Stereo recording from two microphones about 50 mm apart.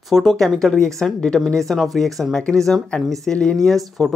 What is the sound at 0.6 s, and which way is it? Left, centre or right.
Speech, centre.